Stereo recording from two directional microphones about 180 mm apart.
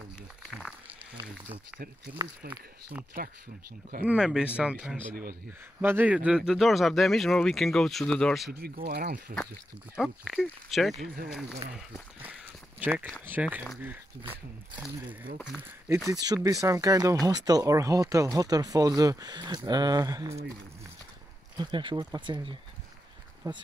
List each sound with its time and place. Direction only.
0.5 s a sound: 5° left (ahead or behind)
2.5 s speech: 10° right (ahead or behind)
8.5 s speech: 60° right (ahead or behind)
9.9 s speech: centre (ahead or behind)
12.2 s walk: 10° right (ahead or behind)
13.2 s speech: 10° right (ahead or behind)
16.1 s speech: 20° right (ahead or behind)
21.5 s speech: 25° right (ahead or behind)